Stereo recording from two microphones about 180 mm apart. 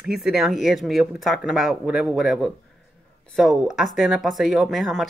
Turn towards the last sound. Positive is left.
turn(degrees=0)  # may be behind; listen again after turning